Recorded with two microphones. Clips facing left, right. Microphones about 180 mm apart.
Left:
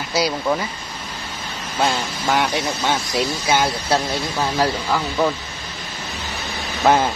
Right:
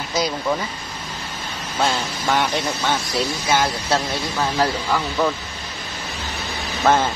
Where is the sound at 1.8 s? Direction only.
10° left (ahead or behind).